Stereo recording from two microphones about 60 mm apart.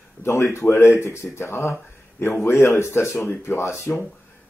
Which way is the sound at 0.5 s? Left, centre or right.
Left.